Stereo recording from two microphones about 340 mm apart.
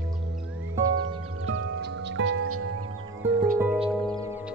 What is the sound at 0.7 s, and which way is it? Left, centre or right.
Music, right.